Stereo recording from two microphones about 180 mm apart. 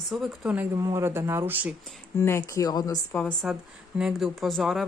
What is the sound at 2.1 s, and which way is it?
Speech, 15° left (ahead or behind).